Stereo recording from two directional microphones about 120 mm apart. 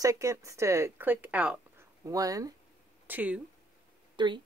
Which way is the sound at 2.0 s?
30° right (ahead or behind).